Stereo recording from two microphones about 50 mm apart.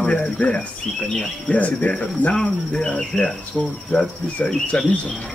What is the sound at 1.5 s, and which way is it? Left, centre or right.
Cricket, left.